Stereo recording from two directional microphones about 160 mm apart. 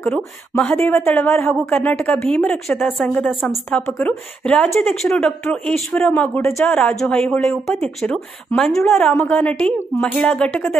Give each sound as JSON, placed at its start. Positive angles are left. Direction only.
{"t": 0.0, "sound": "speech", "side_deg": 5}
{"t": 8.8, "sound": "speech", "side_deg": 15}